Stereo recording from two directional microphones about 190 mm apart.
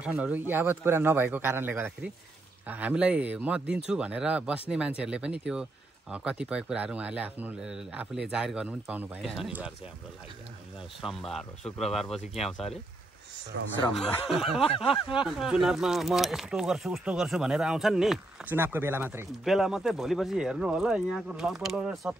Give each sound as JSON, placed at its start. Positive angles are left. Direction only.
{"t": 0.0, "sound": "a man's voice", "side_deg": -5}
{"t": 11.0, "sound": "speech", "side_deg": 0}
{"t": 13.5, "sound": "speech", "side_deg": -75}
{"t": 13.9, "sound": "speech", "side_deg": 0}
{"t": 14.6, "sound": "speech", "side_deg": 30}
{"t": 15.0, "sound": "speech", "side_deg": -5}